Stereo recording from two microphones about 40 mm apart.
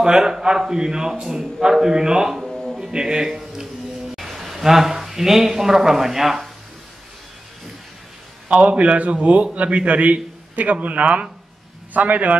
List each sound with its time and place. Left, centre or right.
0.0 s a man's voice: centre
4.2 s speech: centre
8.5 s a man's voice: right